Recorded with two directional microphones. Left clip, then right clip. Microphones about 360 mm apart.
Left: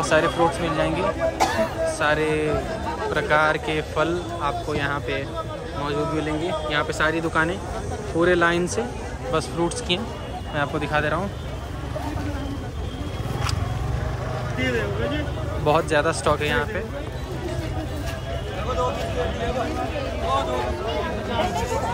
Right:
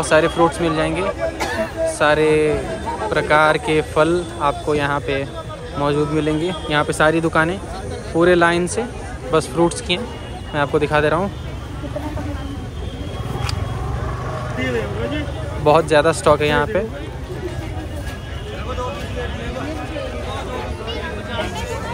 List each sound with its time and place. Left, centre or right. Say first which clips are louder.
0.0 s speech: right 4 dB; centre
1.4 s chatter: left 3 dB; left
2.0 s speech: right 8 dB; centre
15.6 s speech: right 7 dB; centre